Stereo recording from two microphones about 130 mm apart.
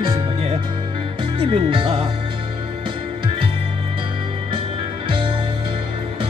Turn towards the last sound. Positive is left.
turn(degrees=-40)  # may be behind; listen again after turning